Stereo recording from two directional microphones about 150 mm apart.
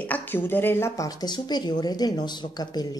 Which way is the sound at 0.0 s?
10° left (ahead or behind).